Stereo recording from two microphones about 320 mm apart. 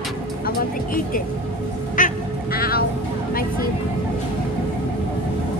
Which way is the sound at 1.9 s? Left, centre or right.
Left.